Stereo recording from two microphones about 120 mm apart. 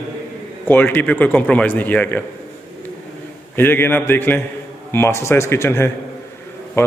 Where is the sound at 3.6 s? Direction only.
20° left (ahead or behind).